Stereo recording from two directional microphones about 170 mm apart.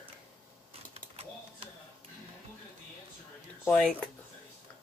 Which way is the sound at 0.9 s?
35° right (ahead or behind).